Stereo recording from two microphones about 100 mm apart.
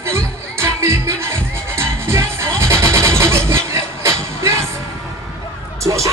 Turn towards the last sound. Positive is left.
turn(degrees=-30)  # may be behind; listen again after turning